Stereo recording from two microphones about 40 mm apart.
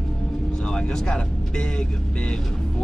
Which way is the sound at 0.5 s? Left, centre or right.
Left.